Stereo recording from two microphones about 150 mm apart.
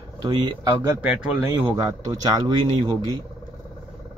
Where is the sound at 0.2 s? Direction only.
30° right (ahead or behind).